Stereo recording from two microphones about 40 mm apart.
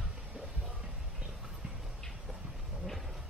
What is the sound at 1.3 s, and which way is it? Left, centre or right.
Clip-clop, centre.